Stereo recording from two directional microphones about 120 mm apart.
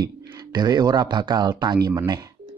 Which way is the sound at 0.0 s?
35° right (ahead or behind).